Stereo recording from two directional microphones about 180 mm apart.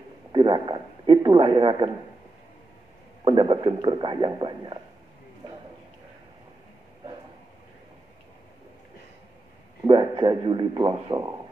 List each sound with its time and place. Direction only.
0.3 s a man's voice: 25° right (ahead or behind)
3.3 s a man's voice: 25° right (ahead or behind)
9.8 s a man's voice: 25° right (ahead or behind)